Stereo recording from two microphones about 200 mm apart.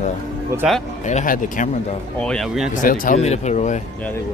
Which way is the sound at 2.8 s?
45° left (ahead or behind).